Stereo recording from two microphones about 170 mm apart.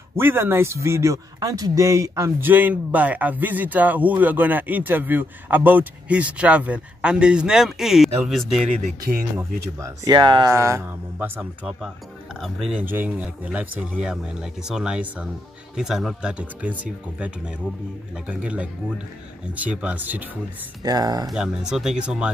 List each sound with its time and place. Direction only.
0.1 s speech: 15° right (ahead or behind)
9.8 s speech: 20° right (ahead or behind)
18.3 s speech: 5° right (ahead or behind)
20.8 s speech: 20° right (ahead or behind)
21.3 s speech: 5° right (ahead or behind)